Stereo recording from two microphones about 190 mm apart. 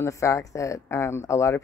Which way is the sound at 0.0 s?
15° left (ahead or behind).